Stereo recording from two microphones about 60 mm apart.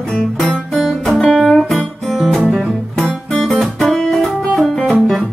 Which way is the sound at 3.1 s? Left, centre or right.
Centre.